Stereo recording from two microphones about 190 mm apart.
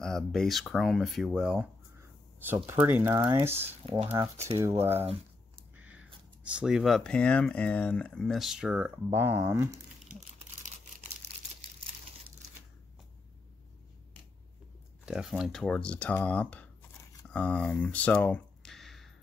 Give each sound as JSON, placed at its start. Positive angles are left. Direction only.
{"t": 0.0, "sound": "speech", "side_deg": 5}
{"t": 3.8, "sound": "speech", "side_deg": -30}
{"t": 4.1, "sound": "speech", "side_deg": -15}
{"t": 5.8, "sound": "a sound", "side_deg": -10}
{"t": 6.4, "sound": "speech", "side_deg": -5}
{"t": 11.2, "sound": "crumpling", "side_deg": -60}
{"t": 15.0, "sound": "speech", "side_deg": -5}